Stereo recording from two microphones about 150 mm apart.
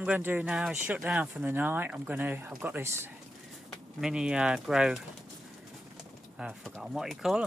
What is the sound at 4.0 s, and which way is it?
Speech, 5° right (ahead or behind).